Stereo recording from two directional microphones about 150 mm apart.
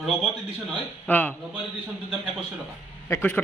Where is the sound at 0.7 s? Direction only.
10° left (ahead or behind).